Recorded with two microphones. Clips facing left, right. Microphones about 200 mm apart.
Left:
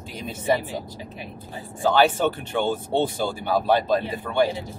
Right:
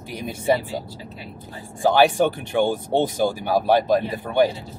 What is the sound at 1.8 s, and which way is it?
Speech, 15° right (ahead or behind).